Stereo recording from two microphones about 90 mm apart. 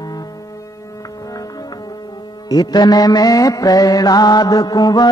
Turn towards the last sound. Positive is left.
turn(degrees=50)  # may be behind; listen again after turning